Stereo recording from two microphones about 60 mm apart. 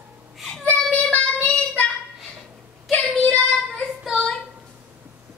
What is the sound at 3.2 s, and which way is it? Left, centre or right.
Child singing, centre.